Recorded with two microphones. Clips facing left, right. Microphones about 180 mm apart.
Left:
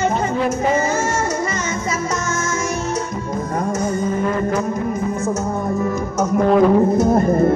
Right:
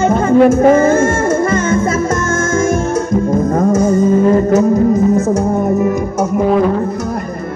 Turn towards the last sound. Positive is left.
turn(degrees=-5)  # may be behind; listen again after turning